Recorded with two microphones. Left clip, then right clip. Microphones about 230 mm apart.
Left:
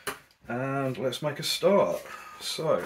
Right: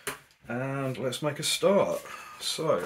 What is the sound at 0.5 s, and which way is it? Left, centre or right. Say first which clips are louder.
Speech: left 2 dB; centre.